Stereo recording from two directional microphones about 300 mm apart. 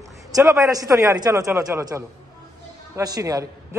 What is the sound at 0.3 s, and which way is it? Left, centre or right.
A woman's voice, centre.